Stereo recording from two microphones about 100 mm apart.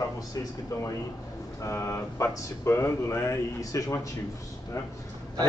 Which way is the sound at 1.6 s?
30° left (ahead or behind).